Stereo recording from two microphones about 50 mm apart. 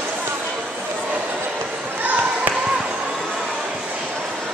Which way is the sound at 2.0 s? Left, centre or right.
Right.